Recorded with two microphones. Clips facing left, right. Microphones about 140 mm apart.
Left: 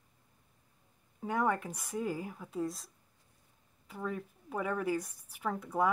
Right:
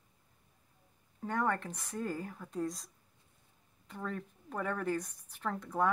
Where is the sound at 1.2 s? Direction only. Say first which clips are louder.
Left 2 dB; 10° left (ahead or behind).